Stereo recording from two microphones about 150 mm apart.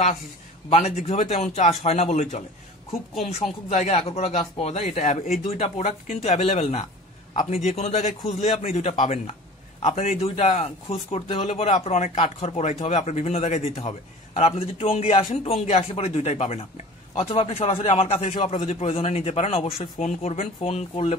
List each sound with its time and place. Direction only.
1.0 s speech: 45° left (ahead or behind)
3.6 s speech: 50° left (ahead or behind)
5.5 s a man's voice: 45° left (ahead or behind)